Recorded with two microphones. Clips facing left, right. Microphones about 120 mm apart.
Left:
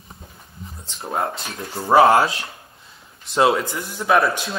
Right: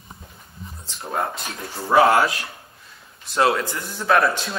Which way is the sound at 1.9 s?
25° left (ahead or behind).